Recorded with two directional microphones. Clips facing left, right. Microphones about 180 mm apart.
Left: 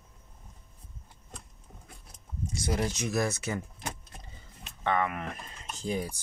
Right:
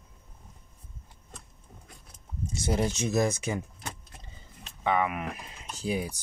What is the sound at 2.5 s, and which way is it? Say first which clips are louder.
Speech: right 3 dB; 25° right (ahead or behind).